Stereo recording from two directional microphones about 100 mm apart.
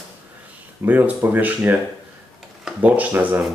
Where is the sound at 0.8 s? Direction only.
15° right (ahead or behind).